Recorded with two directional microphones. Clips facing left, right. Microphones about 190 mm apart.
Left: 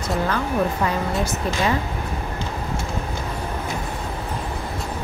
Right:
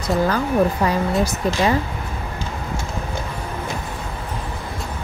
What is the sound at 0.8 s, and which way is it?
Speech, 35° right (ahead or behind).